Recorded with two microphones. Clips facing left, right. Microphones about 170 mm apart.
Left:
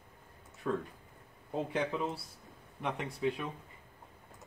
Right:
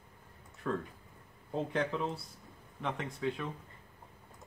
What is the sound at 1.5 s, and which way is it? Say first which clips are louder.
Speech: even; 10° left (ahead or behind).